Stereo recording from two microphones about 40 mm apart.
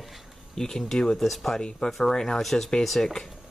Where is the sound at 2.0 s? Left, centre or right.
Centre.